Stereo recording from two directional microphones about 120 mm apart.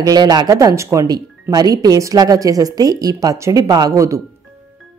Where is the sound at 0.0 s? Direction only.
35° right (ahead or behind).